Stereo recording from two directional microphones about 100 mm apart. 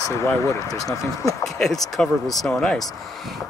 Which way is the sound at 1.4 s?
5° left (ahead or behind).